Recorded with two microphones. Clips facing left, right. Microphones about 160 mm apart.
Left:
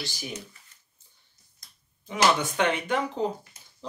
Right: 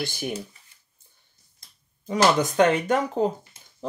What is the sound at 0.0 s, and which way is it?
Speech, 55° right (ahead or behind).